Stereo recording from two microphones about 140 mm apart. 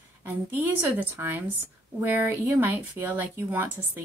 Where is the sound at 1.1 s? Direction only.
15° right (ahead or behind).